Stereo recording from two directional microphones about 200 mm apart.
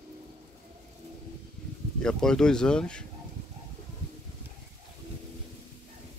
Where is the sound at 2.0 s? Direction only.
5° left (ahead or behind).